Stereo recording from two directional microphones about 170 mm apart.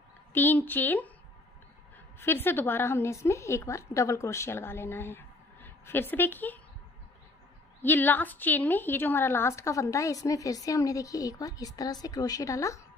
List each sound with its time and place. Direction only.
0.3 s a woman's voice: 10° left (ahead or behind)
2.1 s a woman's voice: 15° left (ahead or behind)
7.8 s a woman's voice: 10° left (ahead or behind)